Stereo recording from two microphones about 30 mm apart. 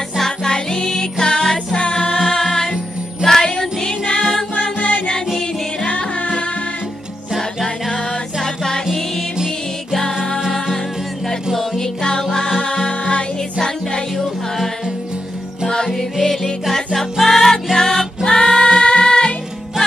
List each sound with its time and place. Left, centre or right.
0.5 s music: left
1.8 s music: left
2.2 s music: centre
5.9 s music: left
8.4 s music: centre
11.8 s music: left
12.7 s music: left
15.9 s music: centre